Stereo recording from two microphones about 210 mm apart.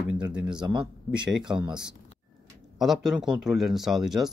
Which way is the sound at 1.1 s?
5° right (ahead or behind).